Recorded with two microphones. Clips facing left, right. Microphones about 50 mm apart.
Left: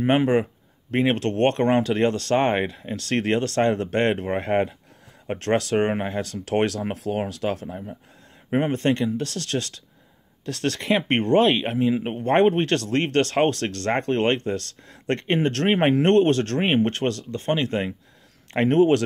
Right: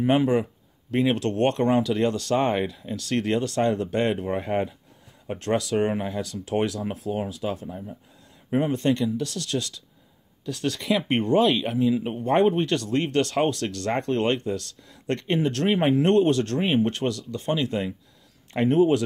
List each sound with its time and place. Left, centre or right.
0.0 s speech: left
6.4 s speech: left
8.5 s speech: left
10.4 s speech: left
10.8 s speech: left
18.5 s speech: left